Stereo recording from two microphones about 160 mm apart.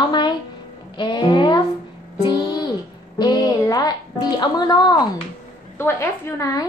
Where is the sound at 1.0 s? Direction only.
30° left (ahead or behind).